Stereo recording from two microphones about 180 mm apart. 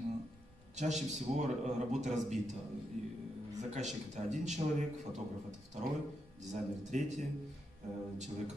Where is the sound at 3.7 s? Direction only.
40° right (ahead or behind).